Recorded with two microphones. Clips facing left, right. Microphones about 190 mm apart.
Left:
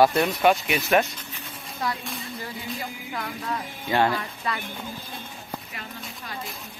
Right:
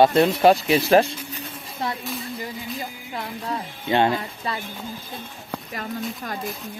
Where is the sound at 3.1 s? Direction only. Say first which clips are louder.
Right 2 dB; 25° right (ahead or behind).